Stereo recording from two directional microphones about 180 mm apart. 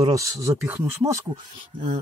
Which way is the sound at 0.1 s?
15° right (ahead or behind).